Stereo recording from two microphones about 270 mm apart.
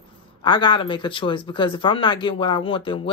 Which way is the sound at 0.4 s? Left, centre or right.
Centre.